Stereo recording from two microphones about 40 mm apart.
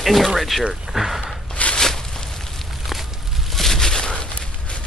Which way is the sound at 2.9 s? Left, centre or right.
Centre.